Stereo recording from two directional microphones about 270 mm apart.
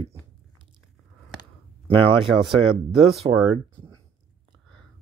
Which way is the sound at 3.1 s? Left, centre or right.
Centre.